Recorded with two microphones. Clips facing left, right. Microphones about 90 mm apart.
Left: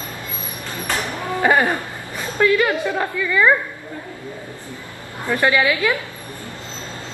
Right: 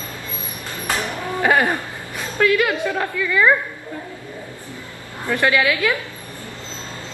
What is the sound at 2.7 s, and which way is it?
Speech, 15° left (ahead or behind).